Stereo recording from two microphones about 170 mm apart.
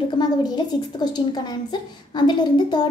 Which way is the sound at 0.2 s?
25° left (ahead or behind).